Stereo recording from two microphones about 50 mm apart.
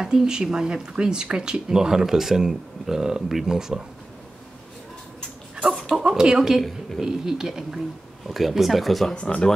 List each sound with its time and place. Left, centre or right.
0.0 s speech: centre
5.9 s chicken: centre
6.2 s speech: centre
9.1 s speech: left